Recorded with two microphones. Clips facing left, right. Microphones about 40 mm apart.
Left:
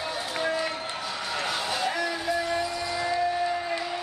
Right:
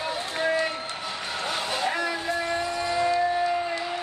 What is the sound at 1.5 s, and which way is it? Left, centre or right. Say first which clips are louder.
Vehicle: right 3 dB; centre.